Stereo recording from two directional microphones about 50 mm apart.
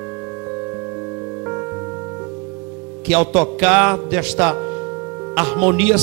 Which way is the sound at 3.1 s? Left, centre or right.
Right.